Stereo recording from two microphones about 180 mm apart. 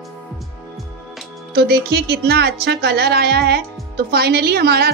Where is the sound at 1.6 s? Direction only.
65° right (ahead or behind).